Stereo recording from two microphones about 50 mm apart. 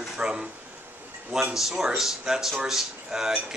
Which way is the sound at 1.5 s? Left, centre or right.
Centre.